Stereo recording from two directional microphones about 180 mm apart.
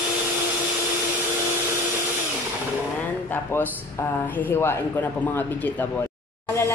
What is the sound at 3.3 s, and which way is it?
Speech, 10° left (ahead or behind).